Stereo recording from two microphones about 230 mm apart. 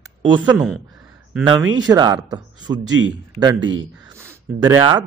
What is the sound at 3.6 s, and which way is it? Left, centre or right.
Speech, right.